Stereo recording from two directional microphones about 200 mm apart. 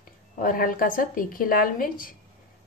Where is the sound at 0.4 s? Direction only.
45° left (ahead or behind).